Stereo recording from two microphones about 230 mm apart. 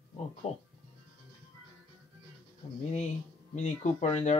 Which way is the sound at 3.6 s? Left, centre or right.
Left.